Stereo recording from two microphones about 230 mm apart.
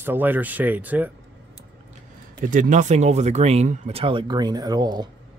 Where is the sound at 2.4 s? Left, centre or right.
Right; by 5.1 s centre.